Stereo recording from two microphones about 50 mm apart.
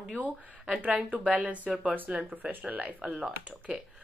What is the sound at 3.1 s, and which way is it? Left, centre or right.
Speech, right.